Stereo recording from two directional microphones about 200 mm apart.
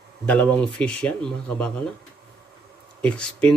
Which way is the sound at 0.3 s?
5° left (ahead or behind).